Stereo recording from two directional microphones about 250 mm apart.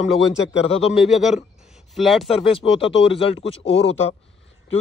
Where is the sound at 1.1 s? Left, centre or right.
Centre.